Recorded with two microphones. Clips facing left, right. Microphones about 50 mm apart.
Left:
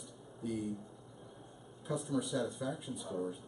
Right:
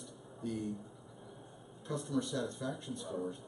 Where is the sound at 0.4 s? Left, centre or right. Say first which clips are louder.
Left 1 dB; centre.